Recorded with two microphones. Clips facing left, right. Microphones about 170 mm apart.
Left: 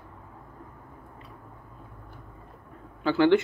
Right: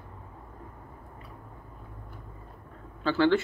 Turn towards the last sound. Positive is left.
turn(degrees=15)  # may be behind; listen again after turning